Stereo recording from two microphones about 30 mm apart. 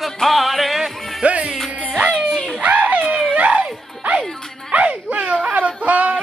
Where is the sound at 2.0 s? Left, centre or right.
Right.